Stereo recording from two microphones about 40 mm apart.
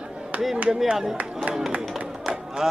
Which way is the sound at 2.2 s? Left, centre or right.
Centre.